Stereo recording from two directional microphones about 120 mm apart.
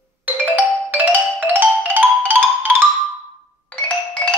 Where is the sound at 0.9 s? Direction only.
15° right (ahead or behind).